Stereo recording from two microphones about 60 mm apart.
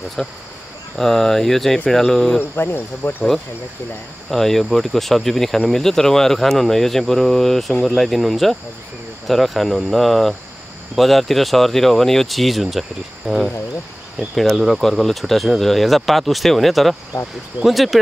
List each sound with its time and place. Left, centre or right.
0.2 s speech: centre
2.5 s speech: left
4.3 s speech: centre